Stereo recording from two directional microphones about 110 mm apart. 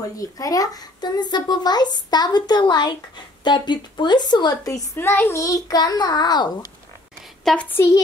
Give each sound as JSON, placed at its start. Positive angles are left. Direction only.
{"t": 0.0, "sound": "speech", "side_deg": 35}
{"t": 4.9, "sound": "speech", "side_deg": 20}
{"t": 7.4, "sound": "a woman's voice", "side_deg": 15}